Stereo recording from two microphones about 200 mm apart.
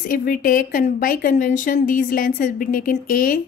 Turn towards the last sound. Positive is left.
turn(degrees=45)  # may be behind; listen again after turning